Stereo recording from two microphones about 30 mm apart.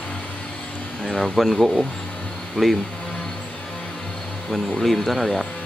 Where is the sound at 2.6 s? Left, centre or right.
Left.